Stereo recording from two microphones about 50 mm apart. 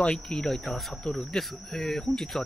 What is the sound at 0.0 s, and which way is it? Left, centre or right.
Speech, centre.